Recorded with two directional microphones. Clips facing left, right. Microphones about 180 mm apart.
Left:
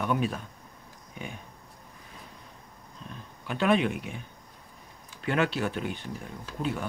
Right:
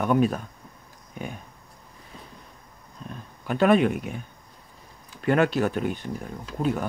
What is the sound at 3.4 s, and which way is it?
Speech, 45° right (ahead or behind).